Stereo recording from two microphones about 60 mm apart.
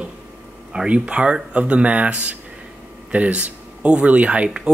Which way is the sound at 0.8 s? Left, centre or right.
Centre.